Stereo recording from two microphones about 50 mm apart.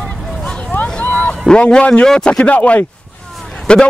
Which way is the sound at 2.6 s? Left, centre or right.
Left.